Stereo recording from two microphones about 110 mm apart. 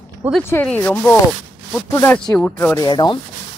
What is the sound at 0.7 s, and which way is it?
Speech, 20° left (ahead or behind).